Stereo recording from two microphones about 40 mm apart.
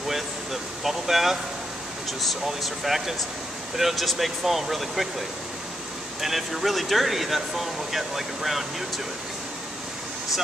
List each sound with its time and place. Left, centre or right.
0.1 s a sound: centre
2.0 s speech: centre
6.2 s speech: centre